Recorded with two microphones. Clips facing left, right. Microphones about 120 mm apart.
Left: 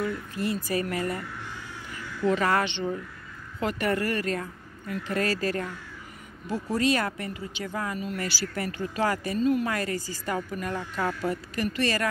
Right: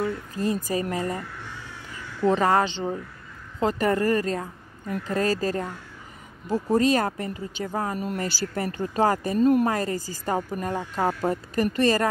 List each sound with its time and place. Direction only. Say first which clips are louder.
0.0 s a woman's voice: right 3 dB; 30° right (ahead or behind)
0.7 s speech: right 2 dB; 20° right (ahead or behind)
2.2 s a woman's voice: right 4 dB; 30° right (ahead or behind)
6.5 s speech: right 4 dB; 40° right (ahead or behind)
9.4 s speech: right 5 dB; 50° right (ahead or behind)
9.7 s speech: right 4 dB; 35° right (ahead or behind)